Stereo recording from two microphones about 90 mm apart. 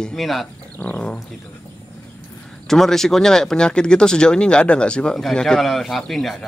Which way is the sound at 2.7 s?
5° left (ahead or behind).